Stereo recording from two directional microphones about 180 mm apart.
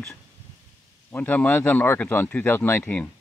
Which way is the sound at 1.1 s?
10° left (ahead or behind).